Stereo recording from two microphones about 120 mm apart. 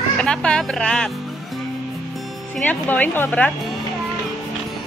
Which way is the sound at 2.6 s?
15° left (ahead or behind).